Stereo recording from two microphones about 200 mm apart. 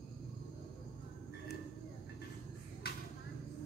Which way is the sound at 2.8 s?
50° left (ahead or behind).